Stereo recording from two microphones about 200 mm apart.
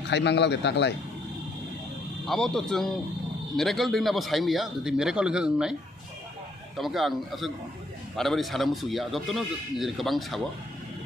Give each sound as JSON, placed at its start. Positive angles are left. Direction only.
{"t": 0.1, "sound": "a man's voice", "side_deg": 60}
{"t": 2.2, "sound": "a man's voice", "side_deg": 0}
{"t": 6.8, "sound": "a man's voice", "side_deg": 0}